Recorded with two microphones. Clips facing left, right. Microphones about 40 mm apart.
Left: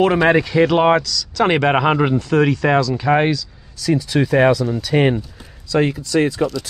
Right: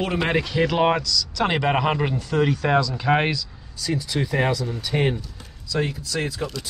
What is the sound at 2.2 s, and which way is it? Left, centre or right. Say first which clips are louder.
Speech: left 3 dB; left.